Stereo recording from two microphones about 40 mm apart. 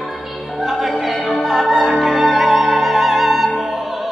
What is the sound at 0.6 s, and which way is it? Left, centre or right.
Opera, centre.